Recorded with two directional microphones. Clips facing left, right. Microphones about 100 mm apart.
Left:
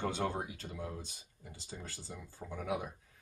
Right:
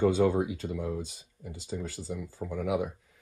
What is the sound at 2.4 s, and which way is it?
Speech, 65° right (ahead or behind).